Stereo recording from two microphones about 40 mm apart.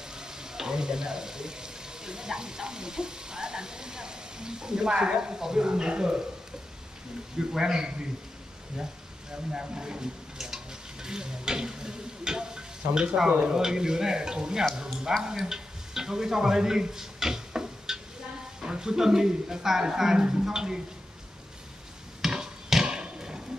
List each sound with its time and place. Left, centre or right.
0.1 s speech: centre
7.3 s speech: centre
9.5 s speech: centre
15.4 s a sound: centre
18.6 s speech: centre
22.2 s a sound: centre